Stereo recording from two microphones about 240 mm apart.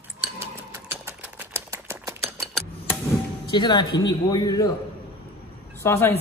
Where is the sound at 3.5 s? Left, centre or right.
Centre.